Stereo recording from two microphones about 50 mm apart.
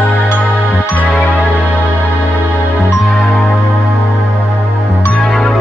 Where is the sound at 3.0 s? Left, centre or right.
Centre.